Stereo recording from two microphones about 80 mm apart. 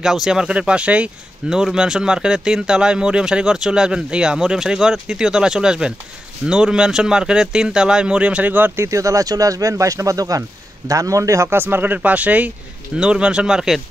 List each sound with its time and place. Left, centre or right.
0.0 s a man's voice: centre